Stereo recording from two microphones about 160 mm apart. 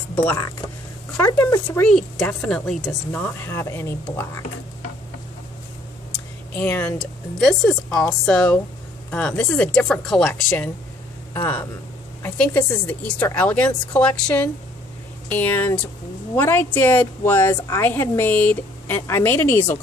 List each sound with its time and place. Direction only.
0.1 s a sound: 10° left (ahead or behind)
1.1 s a woman's voice: 10° left (ahead or behind)
1.9 s a woman's voice: 5° left (ahead or behind)
6.5 s a woman's voice: 10° left (ahead or behind)